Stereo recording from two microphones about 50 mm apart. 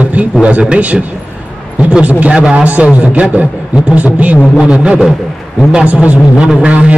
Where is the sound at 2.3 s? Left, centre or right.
Right.